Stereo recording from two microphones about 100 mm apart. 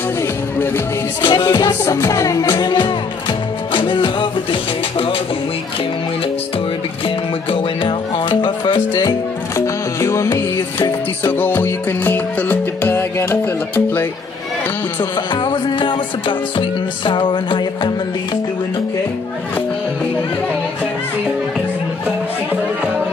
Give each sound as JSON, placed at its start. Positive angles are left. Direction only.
{"t": 1.2, "sound": "music", "side_deg": 45}
{"t": 1.9, "sound": "music", "side_deg": 30}
{"t": 2.4, "sound": "music", "side_deg": 50}
{"t": 7.5, "sound": "music", "side_deg": 55}
{"t": 9.9, "sound": "music", "side_deg": 30}
{"t": 10.8, "sound": "music", "side_deg": 20}
{"t": 15.0, "sound": "music", "side_deg": 50}